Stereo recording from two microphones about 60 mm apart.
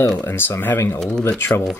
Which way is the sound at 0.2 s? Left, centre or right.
Left.